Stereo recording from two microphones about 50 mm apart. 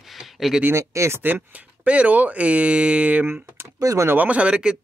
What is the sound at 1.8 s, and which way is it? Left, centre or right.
Speech, right.